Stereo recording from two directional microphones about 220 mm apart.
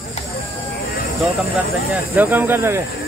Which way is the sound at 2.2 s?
10° right (ahead or behind).